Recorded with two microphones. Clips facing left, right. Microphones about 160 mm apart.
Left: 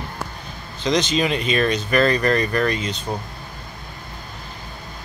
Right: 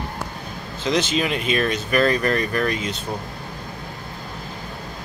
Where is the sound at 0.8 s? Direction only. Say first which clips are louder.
Left 2 dB; 5° right (ahead or behind).